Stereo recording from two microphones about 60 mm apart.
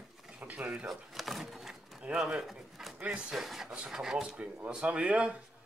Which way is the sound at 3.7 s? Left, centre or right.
Centre.